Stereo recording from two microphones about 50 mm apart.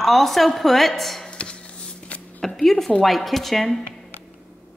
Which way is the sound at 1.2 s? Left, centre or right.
Left.